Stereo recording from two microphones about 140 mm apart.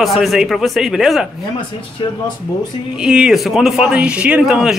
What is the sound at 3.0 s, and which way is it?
Speech, 5° right (ahead or behind).